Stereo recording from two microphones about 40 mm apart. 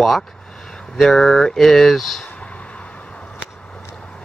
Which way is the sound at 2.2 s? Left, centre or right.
Left.